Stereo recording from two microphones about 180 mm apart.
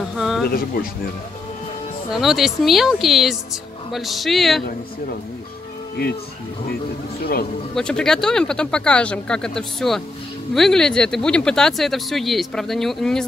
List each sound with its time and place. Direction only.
0.1 s a sound: centre (ahead or behind)
0.8 s speech: 50° left (ahead or behind)
2.1 s speech: centre (ahead or behind)
6.0 s speech: 55° left (ahead or behind)
7.7 s speech: 5° left (ahead or behind)